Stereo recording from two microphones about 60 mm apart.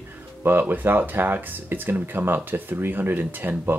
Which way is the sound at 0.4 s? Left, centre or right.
Right.